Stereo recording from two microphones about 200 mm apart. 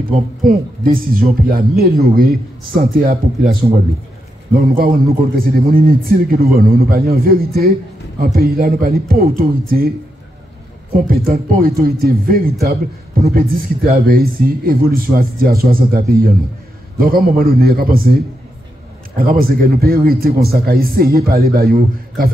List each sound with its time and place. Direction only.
0.1 s speech: 45° right (ahead or behind)
11.1 s speech: 45° right (ahead or behind)
19.4 s speech: 50° right (ahead or behind)